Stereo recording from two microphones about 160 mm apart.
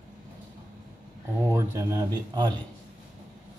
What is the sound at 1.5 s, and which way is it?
Speech, 20° right (ahead or behind).